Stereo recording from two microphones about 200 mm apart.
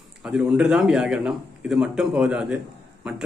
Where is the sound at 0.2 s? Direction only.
5° right (ahead or behind).